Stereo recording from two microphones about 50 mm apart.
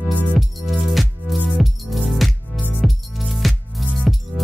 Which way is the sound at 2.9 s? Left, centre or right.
Centre.